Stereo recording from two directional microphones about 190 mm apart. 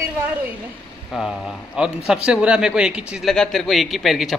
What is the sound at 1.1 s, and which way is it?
A man's voice, centre (ahead or behind).